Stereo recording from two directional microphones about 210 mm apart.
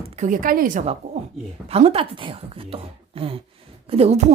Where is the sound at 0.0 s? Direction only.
30° right (ahead or behind).